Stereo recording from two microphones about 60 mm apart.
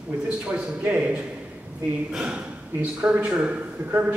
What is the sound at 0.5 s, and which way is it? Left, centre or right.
A man's voice, right.